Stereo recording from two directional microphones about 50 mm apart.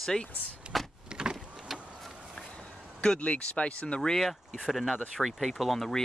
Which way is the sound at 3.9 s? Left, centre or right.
Centre.